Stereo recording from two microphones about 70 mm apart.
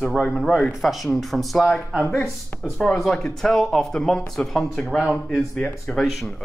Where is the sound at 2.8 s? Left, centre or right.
Centre.